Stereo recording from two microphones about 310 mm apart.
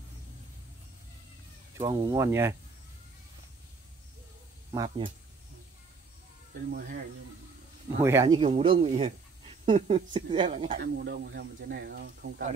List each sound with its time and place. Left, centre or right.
1.8 s speech: centre
4.7 s speech: centre
6.7 s speech: right
8.0 s speech: centre
10.8 s speech: right